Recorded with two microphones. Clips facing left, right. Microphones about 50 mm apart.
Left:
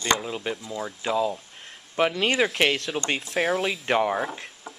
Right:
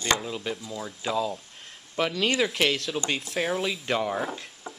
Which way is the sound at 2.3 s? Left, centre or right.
Centre.